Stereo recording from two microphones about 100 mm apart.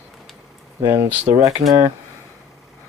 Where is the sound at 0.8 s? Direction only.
20° right (ahead or behind).